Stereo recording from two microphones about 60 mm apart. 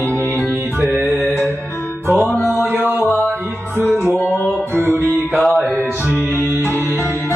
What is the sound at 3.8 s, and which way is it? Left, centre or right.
Music, right.